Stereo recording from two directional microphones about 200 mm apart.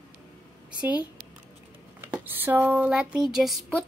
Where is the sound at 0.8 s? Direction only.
5° right (ahead or behind).